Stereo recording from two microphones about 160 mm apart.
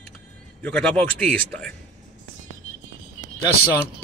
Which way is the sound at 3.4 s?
20° left (ahead or behind).